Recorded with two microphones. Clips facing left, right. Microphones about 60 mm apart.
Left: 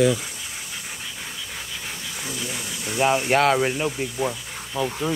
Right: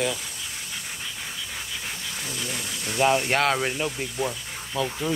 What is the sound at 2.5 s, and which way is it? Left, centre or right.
Speech, centre.